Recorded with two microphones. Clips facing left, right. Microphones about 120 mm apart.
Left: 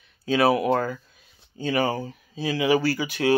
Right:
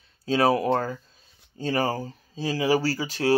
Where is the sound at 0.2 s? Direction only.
35° right (ahead or behind).